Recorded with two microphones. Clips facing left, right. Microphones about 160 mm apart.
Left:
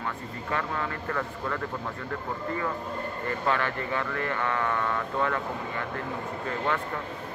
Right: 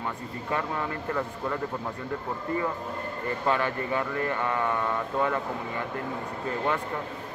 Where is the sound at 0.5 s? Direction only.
15° right (ahead or behind).